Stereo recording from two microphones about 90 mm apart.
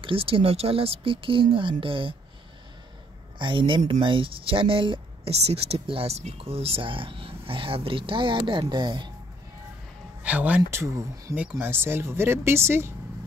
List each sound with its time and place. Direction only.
0.0 s speech: 85° right
3.3 s speech: 65° right (ahead or behind)
10.2 s speech: 15° right (ahead or behind)
10.7 s speech: 35° right (ahead or behind)
11.5 s speech: 25° right (ahead or behind)